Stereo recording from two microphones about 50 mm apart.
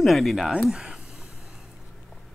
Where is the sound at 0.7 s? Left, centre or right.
Centre.